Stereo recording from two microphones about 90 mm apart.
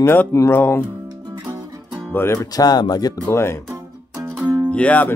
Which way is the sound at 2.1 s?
30° left (ahead or behind).